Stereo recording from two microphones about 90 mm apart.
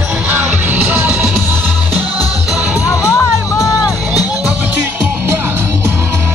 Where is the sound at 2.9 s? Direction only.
35° left (ahead or behind).